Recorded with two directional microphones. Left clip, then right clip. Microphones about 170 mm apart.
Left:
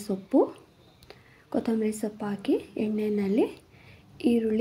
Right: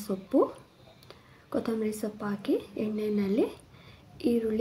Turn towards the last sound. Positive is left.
turn(degrees=20)  # may be behind; listen again after turning